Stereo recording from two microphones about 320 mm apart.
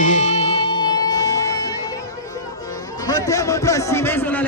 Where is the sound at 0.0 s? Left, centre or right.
Left.